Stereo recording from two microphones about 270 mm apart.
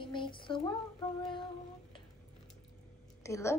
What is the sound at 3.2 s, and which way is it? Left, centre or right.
Speech, centre.